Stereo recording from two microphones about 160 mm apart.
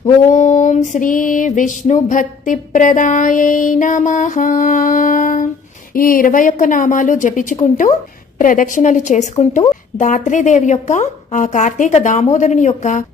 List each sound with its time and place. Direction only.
0.3 s music: 50° left (ahead or behind)
5.9 s a woman's voice: 60° left (ahead or behind)
8.4 s music: 55° left (ahead or behind)